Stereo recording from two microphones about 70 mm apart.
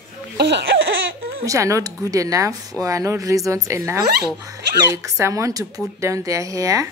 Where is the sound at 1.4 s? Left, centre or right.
Right.